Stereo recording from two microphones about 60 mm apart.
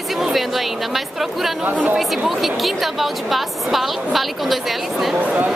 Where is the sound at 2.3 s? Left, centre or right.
Centre.